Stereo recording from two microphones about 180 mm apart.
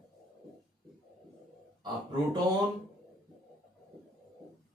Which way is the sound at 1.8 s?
20° right (ahead or behind).